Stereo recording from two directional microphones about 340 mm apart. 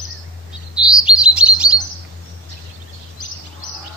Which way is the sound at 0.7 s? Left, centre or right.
Centre.